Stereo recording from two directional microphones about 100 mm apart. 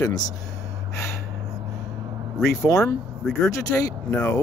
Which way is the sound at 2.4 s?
30° left (ahead or behind).